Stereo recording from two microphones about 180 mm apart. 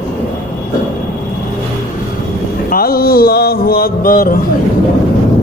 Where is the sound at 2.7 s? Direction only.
55° left (ahead or behind).